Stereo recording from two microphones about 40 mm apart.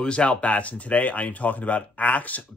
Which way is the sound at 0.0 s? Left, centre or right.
Left.